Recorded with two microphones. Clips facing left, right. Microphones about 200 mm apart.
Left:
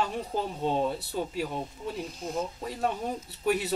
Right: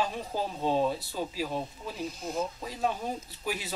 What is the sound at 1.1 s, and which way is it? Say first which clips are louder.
Speech: left 2 dB; 60° left (ahead or behind).